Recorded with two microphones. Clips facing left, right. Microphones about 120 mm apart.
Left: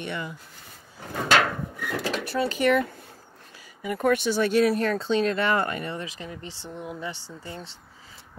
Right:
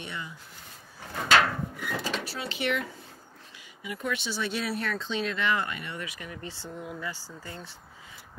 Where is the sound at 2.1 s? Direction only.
50° left (ahead or behind).